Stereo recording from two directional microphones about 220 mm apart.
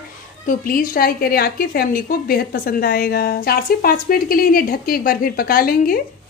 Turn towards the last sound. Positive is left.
turn(degrees=40)  # may be behind; listen again after turning